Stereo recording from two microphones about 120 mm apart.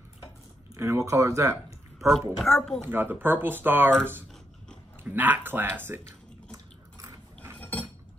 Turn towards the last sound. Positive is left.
turn(degrees=15)  # may be behind; listen again after turning